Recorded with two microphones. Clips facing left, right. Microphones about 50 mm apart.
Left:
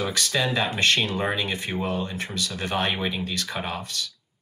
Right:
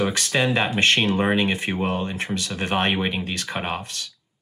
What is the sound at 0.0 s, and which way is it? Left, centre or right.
Speech, right.